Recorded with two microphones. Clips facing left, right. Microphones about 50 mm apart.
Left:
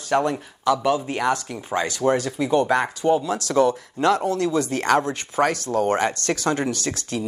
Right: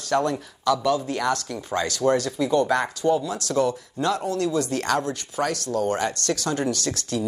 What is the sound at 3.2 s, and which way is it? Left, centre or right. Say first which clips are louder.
Speech: left 4 dB; left.